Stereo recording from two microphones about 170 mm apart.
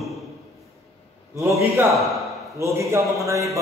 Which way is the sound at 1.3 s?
15° right (ahead or behind).